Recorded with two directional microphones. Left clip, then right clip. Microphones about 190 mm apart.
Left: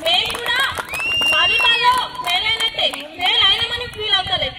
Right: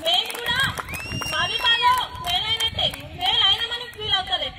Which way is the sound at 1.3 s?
30° left (ahead or behind).